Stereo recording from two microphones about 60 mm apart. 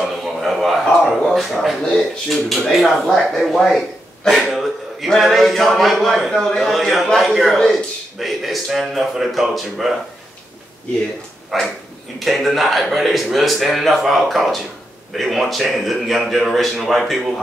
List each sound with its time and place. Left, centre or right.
0.0 s speech: centre
11.5 s speech: centre